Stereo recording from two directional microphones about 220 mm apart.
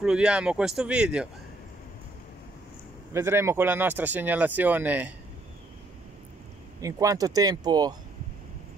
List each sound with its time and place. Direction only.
0.0 s speech: 5° right (ahead or behind)
3.1 s speech: 10° right (ahead or behind)
6.8 s speech: 15° right (ahead or behind)